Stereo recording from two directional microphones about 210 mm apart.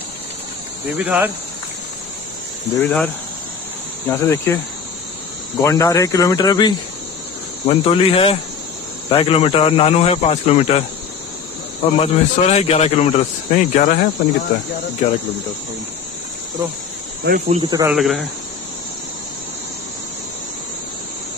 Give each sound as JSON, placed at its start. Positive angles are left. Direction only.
{"t": 0.9, "sound": "speech", "side_deg": -10}
{"t": 2.7, "sound": "speech", "side_deg": 10}
{"t": 4.1, "sound": "speech", "side_deg": 10}
{"t": 5.6, "sound": "speech", "side_deg": 15}
{"t": 12.0, "sound": "speech", "side_deg": 30}
{"t": 17.5, "sound": "speech", "side_deg": -20}
{"t": 17.9, "sound": "speech", "side_deg": 0}